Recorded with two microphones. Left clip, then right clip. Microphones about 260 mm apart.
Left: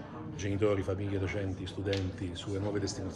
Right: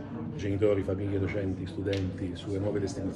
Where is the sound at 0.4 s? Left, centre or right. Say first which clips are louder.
Right 4 dB; left.